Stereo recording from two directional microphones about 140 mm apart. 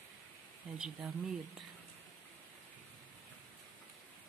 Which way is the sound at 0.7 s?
5° right (ahead or behind).